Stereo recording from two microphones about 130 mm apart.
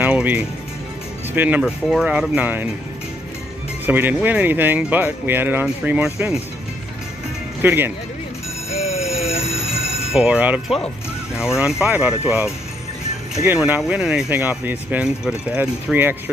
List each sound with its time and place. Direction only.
0.0 s music: 15° right (ahead or behind)
1.3 s speech: 15° right (ahead or behind)
3.8 s speech: 15° right (ahead or behind)
7.6 s speech: 15° right (ahead or behind)
8.7 s a sound: 55° left (ahead or behind)
9.7 s telephone bell ringing: 5° right (ahead or behind)
11.3 s speech: 20° left (ahead or behind)
11.8 s speech: 10° right (ahead or behind)
13.6 s speech: 10° right (ahead or behind)